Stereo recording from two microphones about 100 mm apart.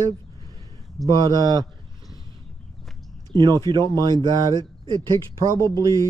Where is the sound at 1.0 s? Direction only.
40° right (ahead or behind).